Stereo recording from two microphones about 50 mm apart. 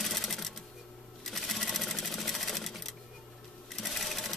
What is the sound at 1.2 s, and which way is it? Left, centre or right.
Sewing machine, centre.